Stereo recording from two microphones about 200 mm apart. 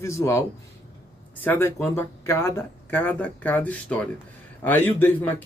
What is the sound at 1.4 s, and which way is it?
Speech, 15° left (ahead or behind).